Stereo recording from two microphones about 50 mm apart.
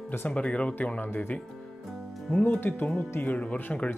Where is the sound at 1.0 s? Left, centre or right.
Left.